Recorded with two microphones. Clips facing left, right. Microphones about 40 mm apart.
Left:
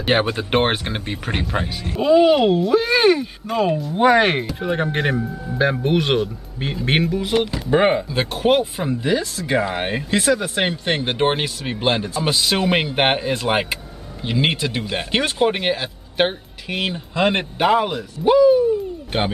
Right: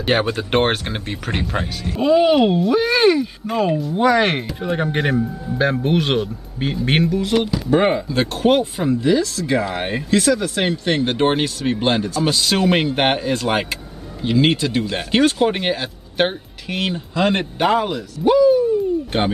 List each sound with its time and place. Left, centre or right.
0.0 s speech: centre
3.9 s speech: left
4.2 s speech: centre
9.0 s speech: centre
9.8 s speech: centre
10.1 s speech: left; by 17.0 s centre
17.1 s speech: centre
17.4 s speech: centre